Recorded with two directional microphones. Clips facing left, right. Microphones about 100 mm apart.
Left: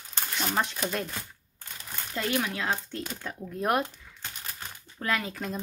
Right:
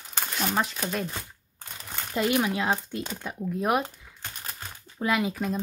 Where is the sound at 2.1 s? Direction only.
15° right (ahead or behind).